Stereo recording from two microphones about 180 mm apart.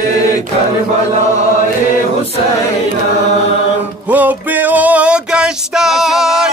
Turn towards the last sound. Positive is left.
turn(degrees=0)  # may be behind; listen again after turning